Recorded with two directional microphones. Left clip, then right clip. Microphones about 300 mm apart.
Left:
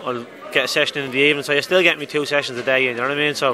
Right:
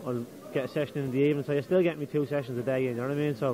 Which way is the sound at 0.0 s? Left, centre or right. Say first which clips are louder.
Left 9 dB; centre.